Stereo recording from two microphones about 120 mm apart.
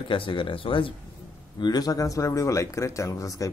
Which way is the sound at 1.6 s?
35° left (ahead or behind).